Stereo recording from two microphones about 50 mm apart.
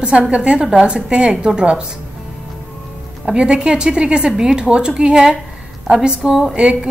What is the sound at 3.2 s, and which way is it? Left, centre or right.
A woman's voice, centre.